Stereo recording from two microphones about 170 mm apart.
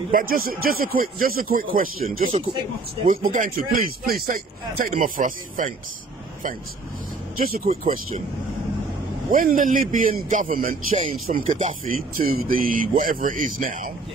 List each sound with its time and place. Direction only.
0.1 s a man's voice: 55° right (ahead or behind)
7.3 s a man's voice: 55° right (ahead or behind)
9.3 s a man's voice: 50° right (ahead or behind)